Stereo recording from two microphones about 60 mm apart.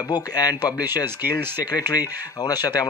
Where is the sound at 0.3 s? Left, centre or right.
Left.